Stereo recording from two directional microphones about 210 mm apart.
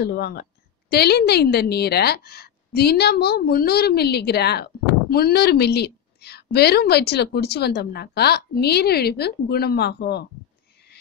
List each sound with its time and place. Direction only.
0.0 s a woman's voice: 50° left (ahead or behind)